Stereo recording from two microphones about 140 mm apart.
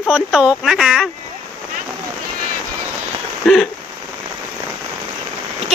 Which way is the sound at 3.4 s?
5° left (ahead or behind).